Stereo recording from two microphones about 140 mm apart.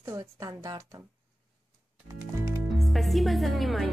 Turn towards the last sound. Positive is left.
turn(degrees=0)  # may be behind; listen again after turning